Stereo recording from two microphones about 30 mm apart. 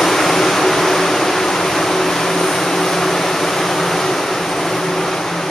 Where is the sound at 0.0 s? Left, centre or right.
Centre.